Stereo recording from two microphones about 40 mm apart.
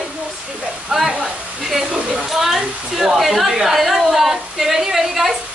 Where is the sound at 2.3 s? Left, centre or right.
Centre.